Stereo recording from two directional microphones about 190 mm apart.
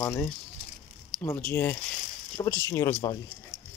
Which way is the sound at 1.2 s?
10° left (ahead or behind).